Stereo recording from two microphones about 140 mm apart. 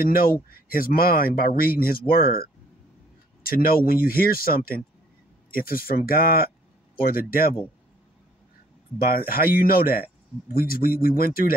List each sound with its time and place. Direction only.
0.0 s speech: 90° left
8.9 s speech: 90° left